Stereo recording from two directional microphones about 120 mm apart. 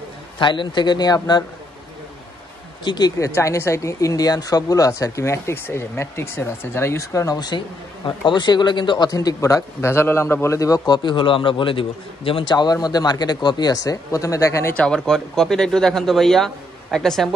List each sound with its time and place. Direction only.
0.4 s speech: 40° left (ahead or behind)
2.8 s speech: 40° left (ahead or behind)
3.2 s speech: 25° left (ahead or behind)
11.0 s a man's voice: 40° left (ahead or behind); by 14.7 s 25° left (ahead or behind)
14.7 s speech: 10° left (ahead or behind)